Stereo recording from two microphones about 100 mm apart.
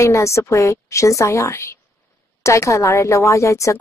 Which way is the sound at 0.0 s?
30° left (ahead or behind).